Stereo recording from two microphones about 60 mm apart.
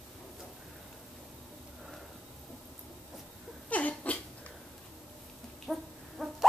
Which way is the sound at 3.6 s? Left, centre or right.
Left.